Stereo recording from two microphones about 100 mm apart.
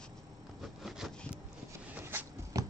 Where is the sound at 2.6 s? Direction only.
35° right (ahead or behind).